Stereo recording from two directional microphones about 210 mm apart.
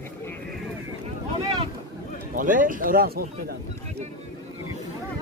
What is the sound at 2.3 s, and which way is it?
Speech, 40° right (ahead or behind).